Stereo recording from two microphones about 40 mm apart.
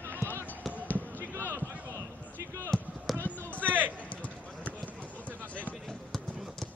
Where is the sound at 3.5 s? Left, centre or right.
Right.